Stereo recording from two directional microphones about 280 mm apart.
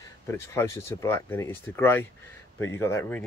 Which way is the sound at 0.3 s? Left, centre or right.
Centre.